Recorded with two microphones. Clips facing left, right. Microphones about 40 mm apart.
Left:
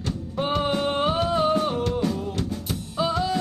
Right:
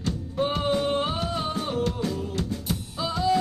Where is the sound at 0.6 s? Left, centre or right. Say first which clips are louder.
Left 2 dB; centre.